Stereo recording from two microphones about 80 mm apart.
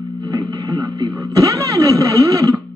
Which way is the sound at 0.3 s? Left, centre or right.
Right.